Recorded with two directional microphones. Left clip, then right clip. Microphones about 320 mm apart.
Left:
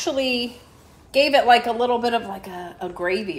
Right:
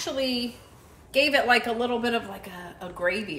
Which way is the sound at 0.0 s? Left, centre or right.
Left.